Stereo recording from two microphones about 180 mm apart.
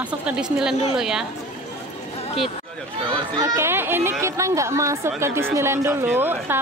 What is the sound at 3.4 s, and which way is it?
Speech, 15° right (ahead or behind).